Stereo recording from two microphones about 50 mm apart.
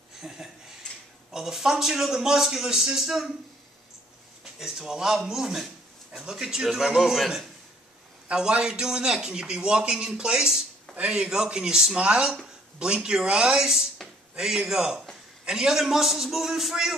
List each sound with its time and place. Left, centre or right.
0.2 s a man's voice: centre
4.6 s a man's voice: centre